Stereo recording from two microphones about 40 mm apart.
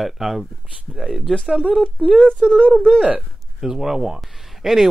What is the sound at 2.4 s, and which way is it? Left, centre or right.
Speech, right.